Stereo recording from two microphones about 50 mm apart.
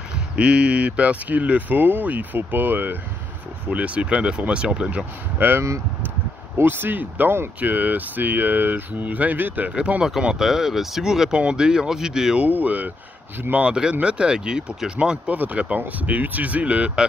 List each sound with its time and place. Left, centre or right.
0.4 s speech: right
3.6 s speech: right
5.4 s speech: right
6.6 s speech: right
9.7 s speech: right
10.0 s speech: centre
12.4 s speech: right
15.3 s speech: right